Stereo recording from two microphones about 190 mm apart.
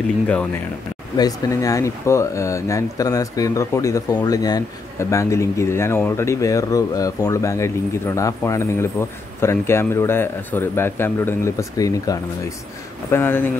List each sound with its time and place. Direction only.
1.1 s speech: 20° left (ahead or behind)